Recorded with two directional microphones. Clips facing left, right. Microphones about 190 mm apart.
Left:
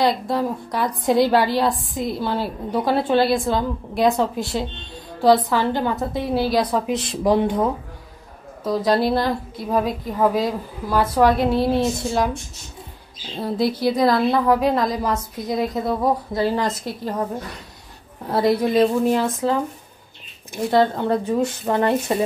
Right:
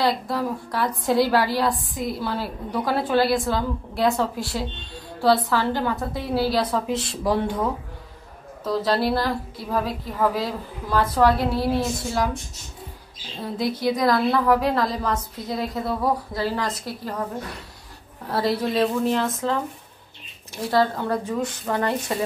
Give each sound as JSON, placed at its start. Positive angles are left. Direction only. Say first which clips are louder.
{"t": 0.0, "sound": "a woman's voice", "louder": "left 3 dB", "side_deg": 20}
{"t": 8.6, "sound": "a woman's voice", "louder": "left 3 dB", "side_deg": 15}
{"t": 13.4, "sound": "a woman's voice", "louder": "left 4 dB", "side_deg": 35}
{"t": 18.2, "sound": "speech", "louder": "left 5 dB", "side_deg": 20}
{"t": 20.5, "sound": "a woman's voice", "louder": "left 3 dB", "side_deg": 20}